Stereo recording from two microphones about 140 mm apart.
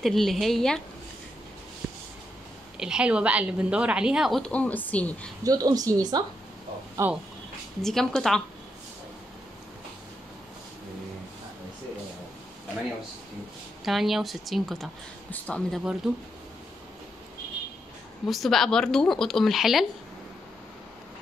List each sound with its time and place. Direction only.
0.0 s a woman's voice: centre (ahead or behind)
2.8 s a woman's voice: 5° right (ahead or behind); by 5.3 s 10° left (ahead or behind)
5.4 s a woman's voice: 25° right (ahead or behind)
7.8 s a woman's voice: 5° left (ahead or behind)
13.8 s a woman's voice: centre (ahead or behind)
16.0 s a woman's voice: centre (ahead or behind)
18.3 s a woman's voice: centre (ahead or behind)